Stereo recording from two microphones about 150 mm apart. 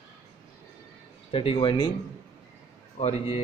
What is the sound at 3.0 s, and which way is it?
Speech, 45° left (ahead or behind).